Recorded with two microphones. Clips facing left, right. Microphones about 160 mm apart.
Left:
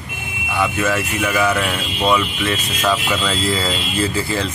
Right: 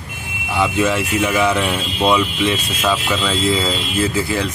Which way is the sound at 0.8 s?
15° right (ahead or behind).